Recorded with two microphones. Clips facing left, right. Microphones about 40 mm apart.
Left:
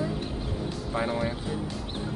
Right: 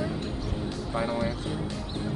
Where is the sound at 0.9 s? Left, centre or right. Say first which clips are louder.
Even; centre.